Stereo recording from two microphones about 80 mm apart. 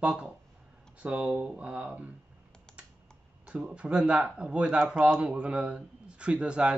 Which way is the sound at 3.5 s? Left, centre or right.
Centre.